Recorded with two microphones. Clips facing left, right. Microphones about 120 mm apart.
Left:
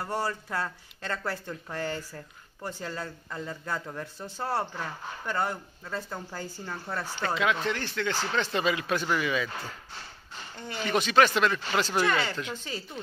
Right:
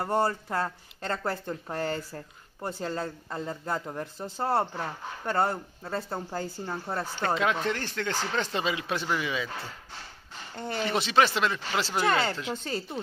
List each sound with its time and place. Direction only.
0.0 s speech: 25° right (ahead or behind)
7.3 s speech: 45° right (ahead or behind)
8.5 s speech: 25° right (ahead or behind)
10.9 s speech: 30° right (ahead or behind)